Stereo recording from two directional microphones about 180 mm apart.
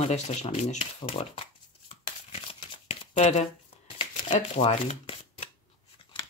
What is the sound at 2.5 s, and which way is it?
Shuffling cards, 30° left (ahead or behind).